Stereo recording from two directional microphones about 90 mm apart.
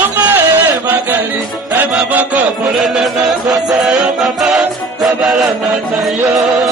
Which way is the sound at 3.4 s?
45° right (ahead or behind).